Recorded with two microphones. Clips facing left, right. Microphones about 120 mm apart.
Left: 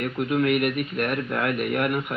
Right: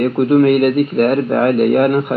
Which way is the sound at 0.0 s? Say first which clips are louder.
Right 12 dB; 45° right (ahead or behind).